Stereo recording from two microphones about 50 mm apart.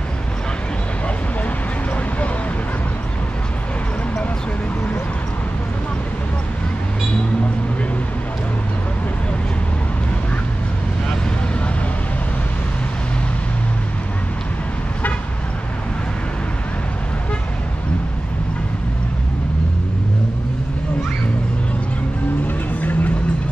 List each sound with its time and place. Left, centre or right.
22.8 s music: left